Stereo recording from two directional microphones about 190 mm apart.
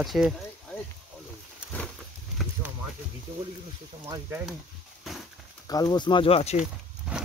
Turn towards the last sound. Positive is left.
turn(degrees=-5)  # may be behind; listen again after turning